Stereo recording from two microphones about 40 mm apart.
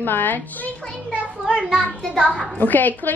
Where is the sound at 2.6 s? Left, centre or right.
Left.